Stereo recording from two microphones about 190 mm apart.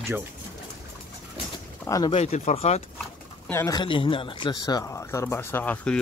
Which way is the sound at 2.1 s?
35° left (ahead or behind).